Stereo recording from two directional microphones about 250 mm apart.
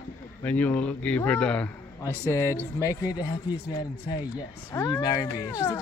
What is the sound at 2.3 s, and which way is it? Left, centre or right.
Snicker, centre.